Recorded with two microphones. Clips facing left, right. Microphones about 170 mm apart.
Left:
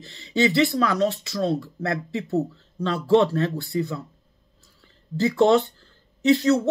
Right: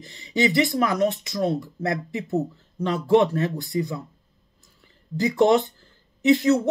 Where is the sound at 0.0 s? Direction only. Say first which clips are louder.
Left 1 dB; 15° right (ahead or behind).